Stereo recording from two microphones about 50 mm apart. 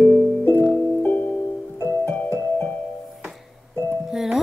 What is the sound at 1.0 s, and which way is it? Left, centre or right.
Music, left.